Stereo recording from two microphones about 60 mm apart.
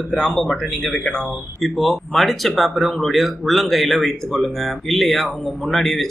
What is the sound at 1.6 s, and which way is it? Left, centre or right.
Speech, centre.